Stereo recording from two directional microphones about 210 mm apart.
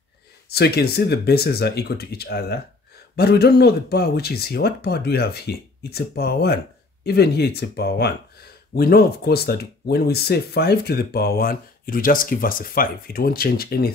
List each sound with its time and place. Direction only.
0.5 s speech: 50° left (ahead or behind)